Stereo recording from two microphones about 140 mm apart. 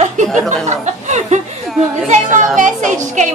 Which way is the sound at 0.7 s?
55° right (ahead or behind).